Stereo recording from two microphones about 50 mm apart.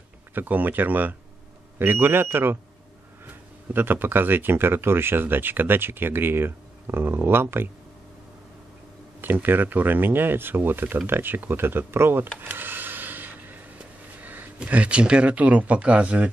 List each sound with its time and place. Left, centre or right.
0.3 s speech: right
3.7 s speech: right
9.2 s speech: right
12.4 s rub: right
14.1 s speech: right